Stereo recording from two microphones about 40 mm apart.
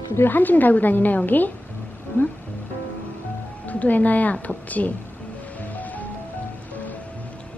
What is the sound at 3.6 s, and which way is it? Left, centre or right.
Speech, left.